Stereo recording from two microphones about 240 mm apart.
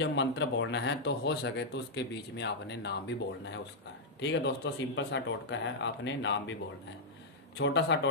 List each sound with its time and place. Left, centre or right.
0.0 s speech: left
7.5 s speech: left